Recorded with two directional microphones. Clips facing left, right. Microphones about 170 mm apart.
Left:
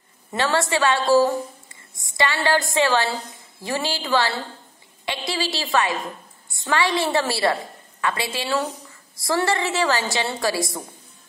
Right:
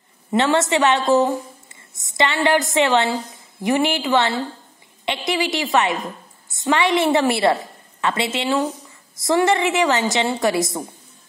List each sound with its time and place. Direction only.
0.3 s a woman's voice: 20° right (ahead or behind)